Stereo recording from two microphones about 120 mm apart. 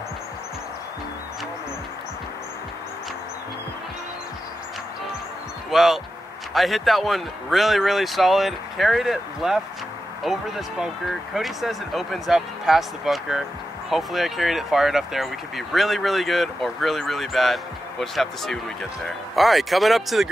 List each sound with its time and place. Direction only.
5.7 s speech: centre (ahead or behind)